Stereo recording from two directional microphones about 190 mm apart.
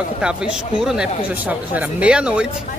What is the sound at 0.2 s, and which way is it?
Speech, 5° right (ahead or behind).